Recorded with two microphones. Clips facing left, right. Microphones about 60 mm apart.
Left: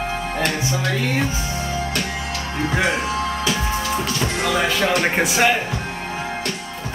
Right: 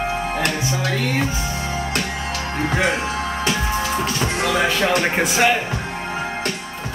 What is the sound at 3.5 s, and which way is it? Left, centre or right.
Music, right.